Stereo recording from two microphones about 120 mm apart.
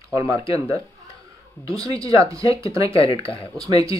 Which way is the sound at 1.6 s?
30° right (ahead or behind).